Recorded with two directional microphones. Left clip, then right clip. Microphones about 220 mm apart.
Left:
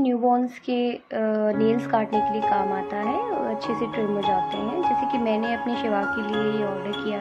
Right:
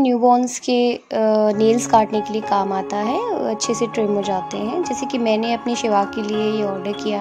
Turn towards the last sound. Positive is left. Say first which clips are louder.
# right 5 dB
turn(degrees=-20)  # may be behind; listen again after turning